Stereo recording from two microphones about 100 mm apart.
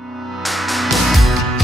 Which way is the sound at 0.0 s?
Centre (ahead or behind).